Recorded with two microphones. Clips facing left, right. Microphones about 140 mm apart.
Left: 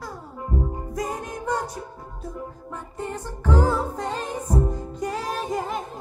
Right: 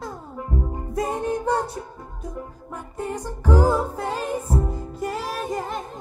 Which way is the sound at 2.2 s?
10° right (ahead or behind).